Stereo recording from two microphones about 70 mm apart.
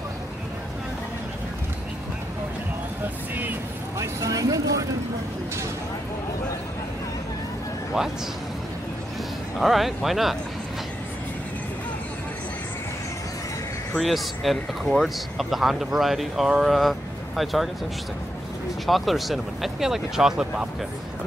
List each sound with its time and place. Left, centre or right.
4.0 s speech: right
9.6 s speech: centre
13.9 s speech: centre
18.9 s speech: centre